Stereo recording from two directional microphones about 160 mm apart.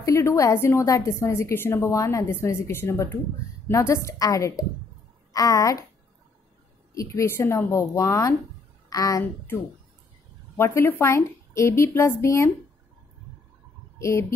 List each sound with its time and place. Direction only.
0.0 s a woman's voice: 20° left (ahead or behind)
6.9 s a woman's voice: 20° left (ahead or behind)
10.5 s speech: 15° left (ahead or behind)
13.9 s speech: 20° left (ahead or behind)